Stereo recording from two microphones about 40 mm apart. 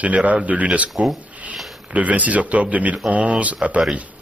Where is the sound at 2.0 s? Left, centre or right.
Right.